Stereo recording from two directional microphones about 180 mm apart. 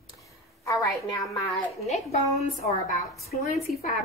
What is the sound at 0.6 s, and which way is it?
Speech, 15° left (ahead or behind).